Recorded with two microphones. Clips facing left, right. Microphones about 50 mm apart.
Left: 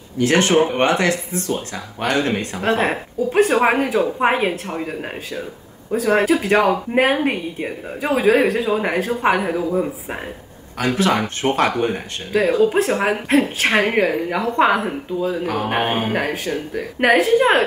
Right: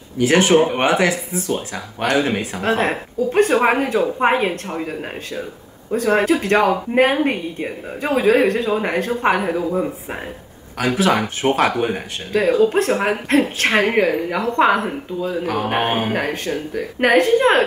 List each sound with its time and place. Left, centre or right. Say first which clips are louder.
0.2 s speech: right 2 dB; centre